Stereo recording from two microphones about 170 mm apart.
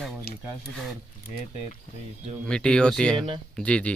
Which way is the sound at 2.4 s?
5° left (ahead or behind).